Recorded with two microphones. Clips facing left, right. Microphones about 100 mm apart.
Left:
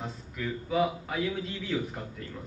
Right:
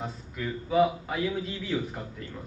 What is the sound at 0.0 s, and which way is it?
A man's voice, 5° right (ahead or behind).